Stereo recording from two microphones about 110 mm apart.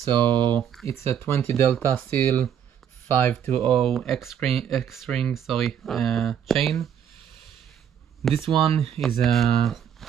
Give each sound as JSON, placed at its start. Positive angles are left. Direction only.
{"t": 0.1, "sound": "speech", "side_deg": -45}
{"t": 0.6, "sound": "speech", "side_deg": 0}
{"t": 1.2, "sound": "speech", "side_deg": 20}
{"t": 3.6, "sound": "speech", "side_deg": 0}
{"t": 8.2, "sound": "speech", "side_deg": 0}
{"t": 8.5, "sound": "speech", "side_deg": -60}
{"t": 9.0, "sound": "speech", "side_deg": 0}